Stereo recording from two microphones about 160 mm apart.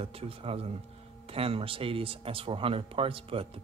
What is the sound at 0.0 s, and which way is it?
Speech, 40° right (ahead or behind).